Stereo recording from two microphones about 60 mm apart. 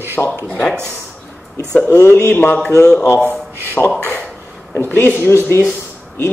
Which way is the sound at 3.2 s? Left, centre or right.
Right.